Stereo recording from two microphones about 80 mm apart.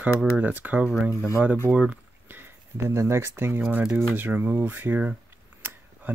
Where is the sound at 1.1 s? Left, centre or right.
Left.